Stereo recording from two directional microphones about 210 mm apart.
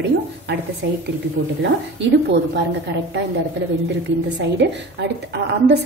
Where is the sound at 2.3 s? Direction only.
55° right (ahead or behind).